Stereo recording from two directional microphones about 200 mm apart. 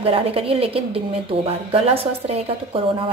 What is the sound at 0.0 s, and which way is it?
A woman's voice, 30° right (ahead or behind).